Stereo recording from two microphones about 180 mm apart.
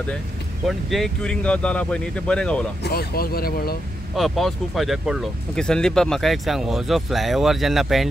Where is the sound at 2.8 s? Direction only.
60° left (ahead or behind).